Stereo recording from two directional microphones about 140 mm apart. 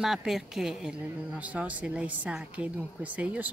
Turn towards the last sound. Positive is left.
turn(degrees=-10)  # may be behind; listen again after turning